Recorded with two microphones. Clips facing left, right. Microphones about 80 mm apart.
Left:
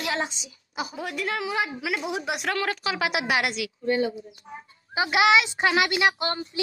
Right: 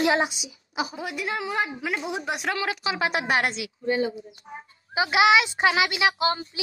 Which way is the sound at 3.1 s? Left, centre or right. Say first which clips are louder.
Right 2 dB; right.